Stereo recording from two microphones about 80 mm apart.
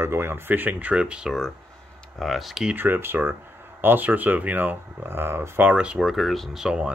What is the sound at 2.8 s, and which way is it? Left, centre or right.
Speech, right.